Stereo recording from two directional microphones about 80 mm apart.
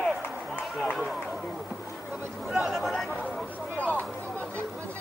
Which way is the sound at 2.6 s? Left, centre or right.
Centre.